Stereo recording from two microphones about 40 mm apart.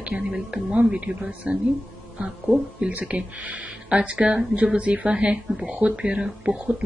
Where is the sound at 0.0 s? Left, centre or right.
Right.